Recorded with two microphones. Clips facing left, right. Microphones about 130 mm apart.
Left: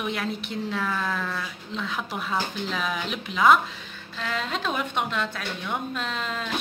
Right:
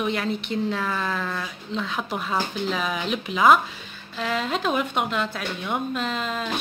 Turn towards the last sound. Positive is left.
turn(degrees=-5)  # may be behind; listen again after turning